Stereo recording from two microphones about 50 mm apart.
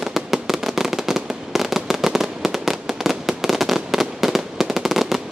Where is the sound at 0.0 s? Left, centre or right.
Centre.